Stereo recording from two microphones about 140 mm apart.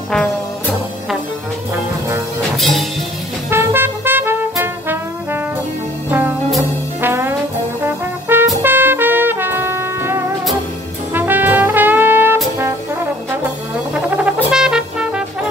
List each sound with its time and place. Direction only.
2.5 s music: centre (ahead or behind)
3.4 s music: 15° right (ahead or behind)
6.0 s music: 15° right (ahead or behind)
7.0 s trombone: 15° right (ahead or behind)
7.8 s brass instrument: 15° right (ahead or behind)
8.6 s trumpet: 15° right (ahead or behind)
11.1 s brass instrument: 15° right (ahead or behind)
13.9 s brass instrument: 5° right (ahead or behind)